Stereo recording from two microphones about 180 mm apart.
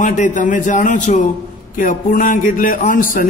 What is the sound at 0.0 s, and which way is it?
A man's voice, 45° left (ahead or behind).